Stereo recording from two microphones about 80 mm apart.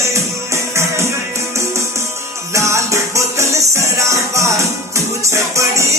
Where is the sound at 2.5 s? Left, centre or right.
Right.